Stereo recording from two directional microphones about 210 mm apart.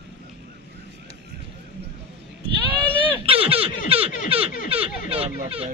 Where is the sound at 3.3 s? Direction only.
25° right (ahead or behind).